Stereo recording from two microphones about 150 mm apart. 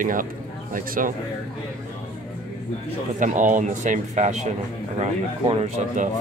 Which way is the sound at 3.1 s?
60° right (ahead or behind).